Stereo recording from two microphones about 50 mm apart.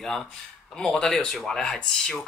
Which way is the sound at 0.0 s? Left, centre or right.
Centre.